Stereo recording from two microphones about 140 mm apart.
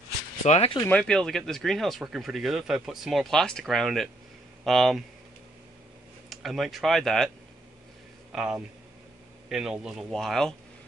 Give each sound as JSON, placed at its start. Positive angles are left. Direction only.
{"t": 0.4, "sound": "speech", "side_deg": 55}
{"t": 0.8, "sound": "speech", "side_deg": 10}
{"t": 6.3, "sound": "speech", "side_deg": 0}
{"t": 8.3, "sound": "a man's voice", "side_deg": -5}